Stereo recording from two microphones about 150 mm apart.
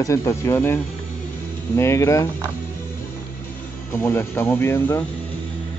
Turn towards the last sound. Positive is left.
turn(degrees=15)  # may be behind; listen again after turning